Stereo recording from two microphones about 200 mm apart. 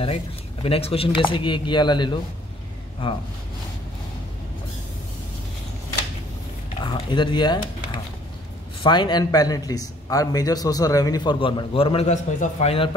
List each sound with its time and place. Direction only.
0.0 s a man's voice: 30° left (ahead or behind)
6.8 s a man's voice: 25° left (ahead or behind)